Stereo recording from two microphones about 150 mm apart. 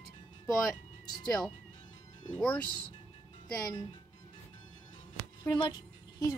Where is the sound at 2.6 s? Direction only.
30° left (ahead or behind).